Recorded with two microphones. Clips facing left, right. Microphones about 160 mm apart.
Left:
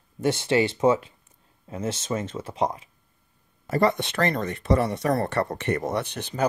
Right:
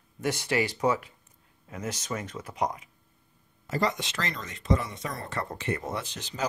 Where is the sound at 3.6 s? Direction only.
60° left (ahead or behind).